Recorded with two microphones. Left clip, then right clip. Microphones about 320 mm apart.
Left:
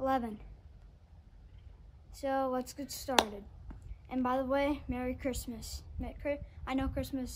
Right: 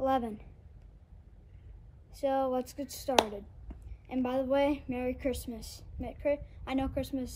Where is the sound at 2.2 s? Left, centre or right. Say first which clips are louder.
Right 3 dB; centre.